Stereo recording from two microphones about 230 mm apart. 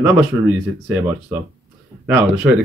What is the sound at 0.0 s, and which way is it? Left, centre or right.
Speech, centre.